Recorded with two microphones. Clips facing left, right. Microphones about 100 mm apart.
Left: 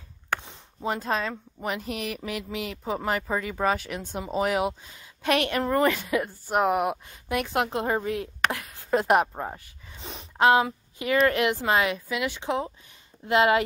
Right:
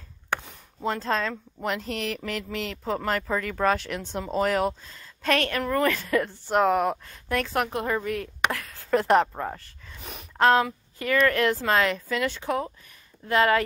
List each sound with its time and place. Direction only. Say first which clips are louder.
0.8 s a woman's voice: right 1 dB; 15° left (ahead or behind)
5.6 s speech: left 2 dB; 30° left (ahead or behind)
5.9 s a woman's voice: even; 15° left (ahead or behind)